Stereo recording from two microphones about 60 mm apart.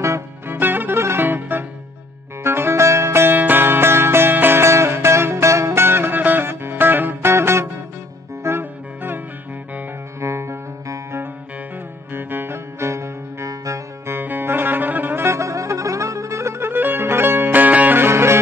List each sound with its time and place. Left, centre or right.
0.0 s music: right
0.6 s music: right
4.6 s music: right
5.9 s music: right
10.2 s music: right
12.1 s music: right
14.1 s music: right
15.2 s music: right